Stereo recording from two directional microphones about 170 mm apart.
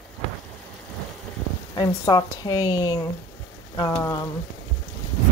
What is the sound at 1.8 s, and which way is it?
A woman's voice, 25° left (ahead or behind).